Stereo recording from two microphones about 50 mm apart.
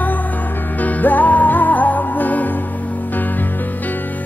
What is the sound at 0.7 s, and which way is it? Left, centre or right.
Music, left.